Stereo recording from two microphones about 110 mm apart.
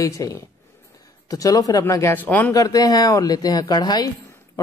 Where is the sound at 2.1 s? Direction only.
15° left (ahead or behind).